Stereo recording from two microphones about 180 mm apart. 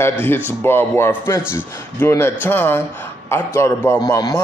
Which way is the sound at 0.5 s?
10° left (ahead or behind).